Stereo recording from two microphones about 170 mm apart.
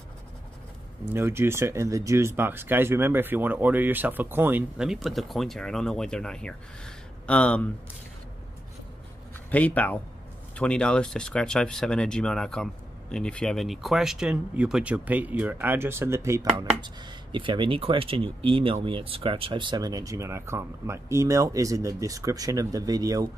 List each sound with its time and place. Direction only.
1.1 s speech: 15° right (ahead or behind); by 7.6 s 5° left (ahead or behind)
9.5 s speech: 10° left (ahead or behind); by 16.4 s 15° right (ahead or behind)
16.5 s speech: 25° right (ahead or behind)